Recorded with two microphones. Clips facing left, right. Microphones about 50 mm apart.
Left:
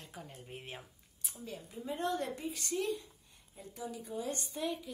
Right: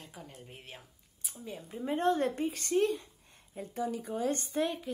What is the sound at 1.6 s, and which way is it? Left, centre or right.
A woman's voice, right.